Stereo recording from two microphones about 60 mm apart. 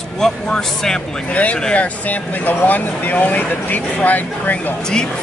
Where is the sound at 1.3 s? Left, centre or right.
Left.